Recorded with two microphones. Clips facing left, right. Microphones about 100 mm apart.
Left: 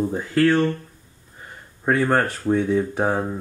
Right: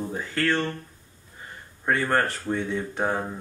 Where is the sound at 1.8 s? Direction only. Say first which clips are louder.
Left 4 dB; 10° left (ahead or behind).